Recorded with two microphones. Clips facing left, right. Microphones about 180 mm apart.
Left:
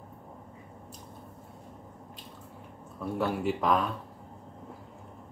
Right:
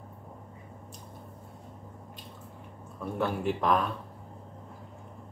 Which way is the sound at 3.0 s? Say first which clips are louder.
Left 1 dB; centre (ahead or behind).